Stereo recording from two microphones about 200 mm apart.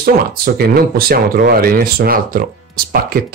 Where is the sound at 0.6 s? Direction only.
50° right (ahead or behind).